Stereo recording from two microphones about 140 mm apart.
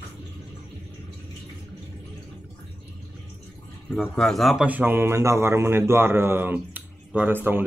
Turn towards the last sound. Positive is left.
turn(degrees=-15)  # may be behind; listen again after turning